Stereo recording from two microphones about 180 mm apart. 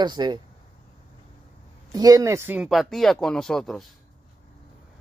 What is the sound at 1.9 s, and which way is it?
Speech, 20° right (ahead or behind).